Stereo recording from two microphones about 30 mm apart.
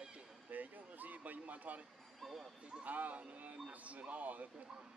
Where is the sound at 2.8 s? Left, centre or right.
Right.